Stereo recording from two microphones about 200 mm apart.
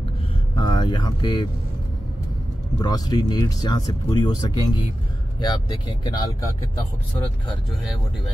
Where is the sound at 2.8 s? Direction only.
20° left (ahead or behind).